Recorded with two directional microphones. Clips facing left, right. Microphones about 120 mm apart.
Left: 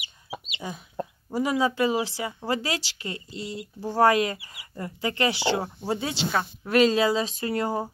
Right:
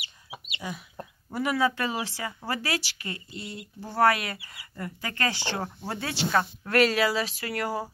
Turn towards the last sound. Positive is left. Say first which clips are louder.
# left 4 dB
turn(degrees=20)  # may be behind; listen again after turning